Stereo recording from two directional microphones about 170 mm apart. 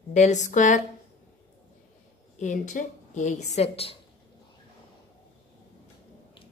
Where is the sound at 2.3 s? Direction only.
45° left (ahead or behind).